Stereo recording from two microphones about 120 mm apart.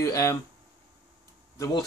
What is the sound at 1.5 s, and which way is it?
Speech, 25° left (ahead or behind).